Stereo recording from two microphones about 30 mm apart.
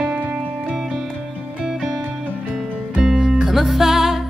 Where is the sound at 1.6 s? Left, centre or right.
Centre.